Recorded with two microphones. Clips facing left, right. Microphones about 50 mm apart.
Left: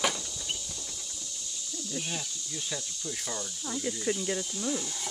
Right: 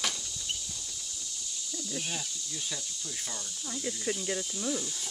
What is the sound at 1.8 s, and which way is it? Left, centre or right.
Speech, centre.